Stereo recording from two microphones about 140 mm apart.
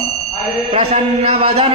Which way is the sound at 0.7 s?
45° right (ahead or behind).